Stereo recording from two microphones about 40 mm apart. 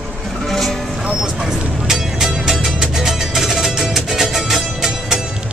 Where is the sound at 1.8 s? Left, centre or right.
Centre.